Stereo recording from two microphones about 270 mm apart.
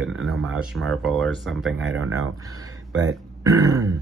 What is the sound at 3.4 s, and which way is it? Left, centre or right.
Throat clearing, centre.